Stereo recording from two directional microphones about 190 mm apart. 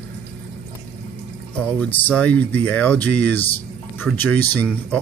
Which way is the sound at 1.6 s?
5° left (ahead or behind).